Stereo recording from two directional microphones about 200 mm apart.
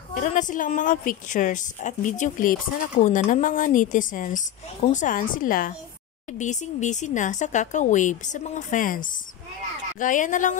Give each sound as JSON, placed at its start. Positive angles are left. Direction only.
{"t": 0.1, "sound": "a woman's voice", "side_deg": 40}